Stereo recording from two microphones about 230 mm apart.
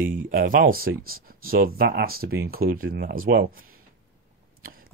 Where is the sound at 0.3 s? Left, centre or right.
Right.